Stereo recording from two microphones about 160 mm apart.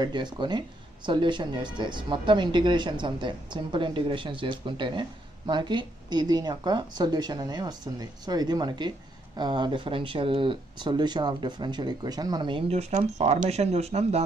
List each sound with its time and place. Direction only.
0.0 s speech: 30° right (ahead or behind)